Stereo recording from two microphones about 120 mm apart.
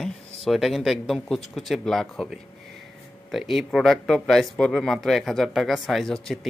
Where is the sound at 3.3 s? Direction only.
Centre (ahead or behind).